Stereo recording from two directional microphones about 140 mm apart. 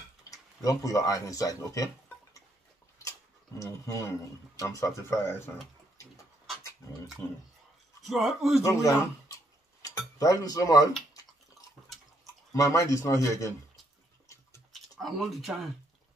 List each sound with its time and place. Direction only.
0.7 s speech: 25° left (ahead or behind)
3.6 s speech: 20° left (ahead or behind)
7.2 s speech: 10° left (ahead or behind)
8.0 s speech: centre (ahead or behind)
8.6 s dishes: 20° left (ahead or behind)
12.5 s speech: 25° left (ahead or behind)
14.7 s a sound: centre (ahead or behind)